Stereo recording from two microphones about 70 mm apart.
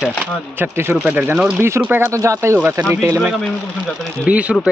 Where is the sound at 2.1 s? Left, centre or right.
Right.